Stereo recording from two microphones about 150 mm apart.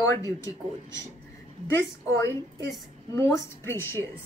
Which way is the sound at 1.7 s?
20° left (ahead or behind).